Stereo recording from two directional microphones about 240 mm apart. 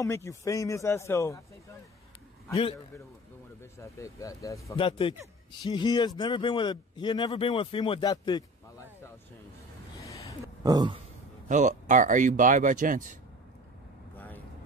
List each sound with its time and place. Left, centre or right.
0.0 s a man's voice: centre
3.7 s a man's voice: centre
10.0 s a sound: centre
10.4 s a sound: centre
11.4 s speech: right
14.1 s vehicle: centre